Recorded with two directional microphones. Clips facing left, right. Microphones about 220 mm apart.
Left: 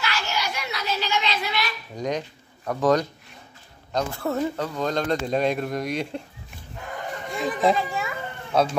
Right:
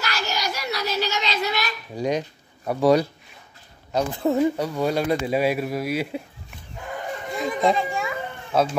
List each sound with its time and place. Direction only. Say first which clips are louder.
0.0 s a sound: right 1 dB; 40° right (ahead or behind)
2.0 s speech: right 3 dB; 10° right (ahead or behind)
7.2 s children playing: even; centre (ahead or behind)